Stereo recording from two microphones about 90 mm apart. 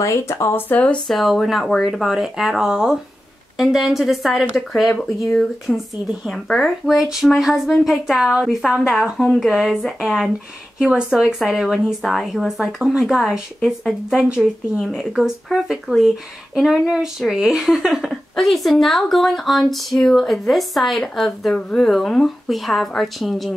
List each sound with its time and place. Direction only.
0.0 s speech: 35° left (ahead or behind)
1.0 s speech: centre (ahead or behind)